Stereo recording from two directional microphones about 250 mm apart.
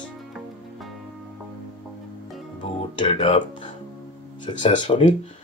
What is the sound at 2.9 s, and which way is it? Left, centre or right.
Speech, left.